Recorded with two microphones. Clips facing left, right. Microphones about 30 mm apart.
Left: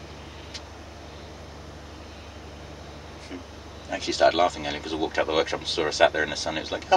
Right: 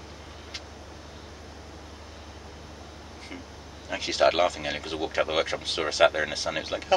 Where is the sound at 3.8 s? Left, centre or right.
Centre.